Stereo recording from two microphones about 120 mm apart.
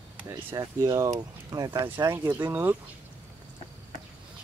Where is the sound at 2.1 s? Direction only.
15° right (ahead or behind).